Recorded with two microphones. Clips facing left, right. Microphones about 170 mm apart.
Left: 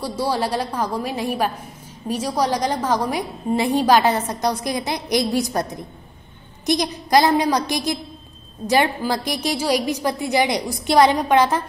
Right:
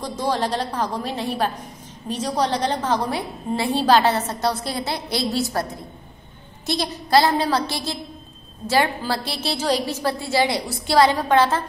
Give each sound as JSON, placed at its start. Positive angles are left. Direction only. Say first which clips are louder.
{"t": 0.0, "sound": "a woman's voice", "louder": "left 1 dB", "side_deg": 10}